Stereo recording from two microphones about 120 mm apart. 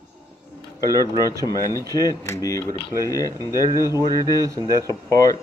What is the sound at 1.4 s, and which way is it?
Speech, 30° left (ahead or behind).